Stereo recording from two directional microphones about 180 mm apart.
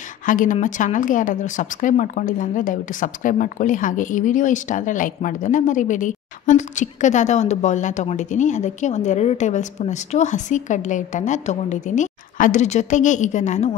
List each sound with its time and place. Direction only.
0.2 s a woman's voice: 45° left (ahead or behind)